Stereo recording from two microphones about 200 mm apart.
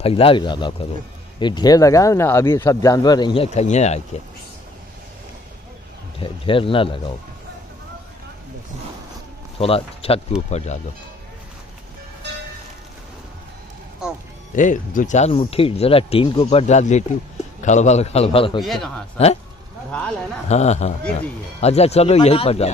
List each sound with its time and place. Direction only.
0.0 s speech: 30° left (ahead or behind)
6.2 s speech: 25° left (ahead or behind)
9.6 s speech: 30° left (ahead or behind)
14.0 s music: 5° right (ahead or behind)
14.5 s speech: 40° left (ahead or behind)
18.6 s a man's voice: centre (ahead or behind)
20.4 s speech: 35° left (ahead or behind)